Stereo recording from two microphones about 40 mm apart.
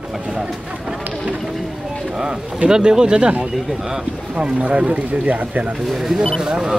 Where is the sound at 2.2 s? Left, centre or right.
Right.